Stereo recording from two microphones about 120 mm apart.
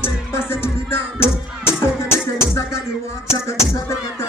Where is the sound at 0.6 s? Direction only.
20° left (ahead or behind).